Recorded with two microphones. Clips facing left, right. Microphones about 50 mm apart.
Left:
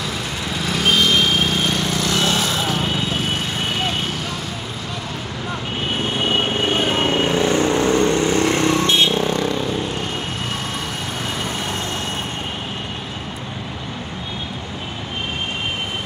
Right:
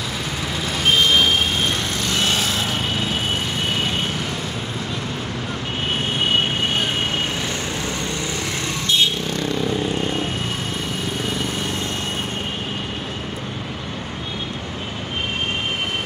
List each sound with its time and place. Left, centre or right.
7.3 s vehicle: left